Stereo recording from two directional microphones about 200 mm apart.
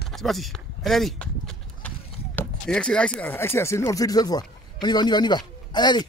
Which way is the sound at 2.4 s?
5° left (ahead or behind).